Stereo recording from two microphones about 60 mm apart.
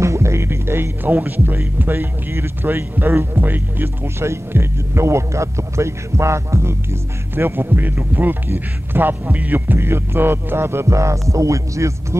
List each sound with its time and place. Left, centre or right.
0.0 s music: right
1.8 s speech: right
9.8 s speech: right